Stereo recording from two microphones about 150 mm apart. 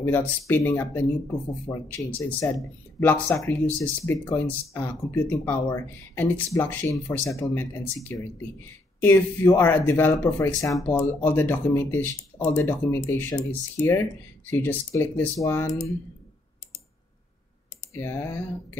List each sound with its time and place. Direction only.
0.0 s speech: 15° left (ahead or behind)
17.9 s speech: 15° left (ahead or behind)